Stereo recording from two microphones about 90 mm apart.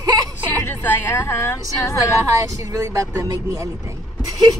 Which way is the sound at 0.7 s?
25° left (ahead or behind).